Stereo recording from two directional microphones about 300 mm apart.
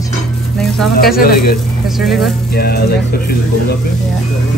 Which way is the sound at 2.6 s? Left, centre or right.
Left.